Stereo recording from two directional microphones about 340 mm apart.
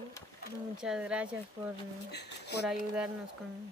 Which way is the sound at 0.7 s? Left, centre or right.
Centre.